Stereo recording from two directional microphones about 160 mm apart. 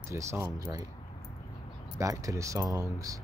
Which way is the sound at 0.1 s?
15° right (ahead or behind).